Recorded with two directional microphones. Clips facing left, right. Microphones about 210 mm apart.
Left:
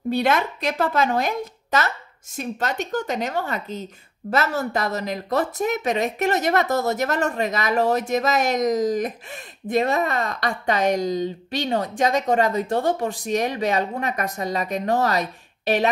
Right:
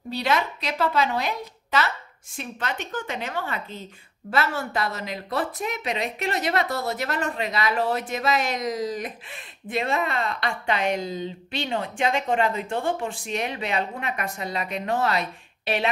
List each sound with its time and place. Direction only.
0.1 s a woman's voice: 50° left (ahead or behind)